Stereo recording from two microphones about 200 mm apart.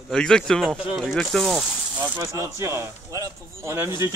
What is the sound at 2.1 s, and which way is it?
Speech, 15° right (ahead or behind).